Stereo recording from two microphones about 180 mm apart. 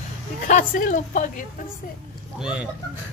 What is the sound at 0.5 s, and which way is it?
Speech, 45° left (ahead or behind).